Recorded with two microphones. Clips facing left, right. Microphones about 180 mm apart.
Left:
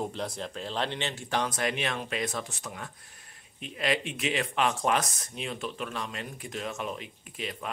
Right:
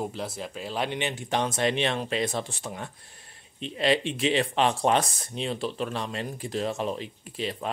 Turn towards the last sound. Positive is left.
turn(degrees=-30)  # may be behind; listen again after turning